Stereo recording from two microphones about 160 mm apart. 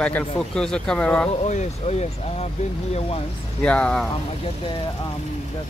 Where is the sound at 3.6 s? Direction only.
5° left (ahead or behind).